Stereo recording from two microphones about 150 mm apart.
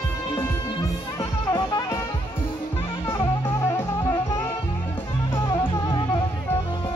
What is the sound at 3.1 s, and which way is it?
Music, 20° left (ahead or behind).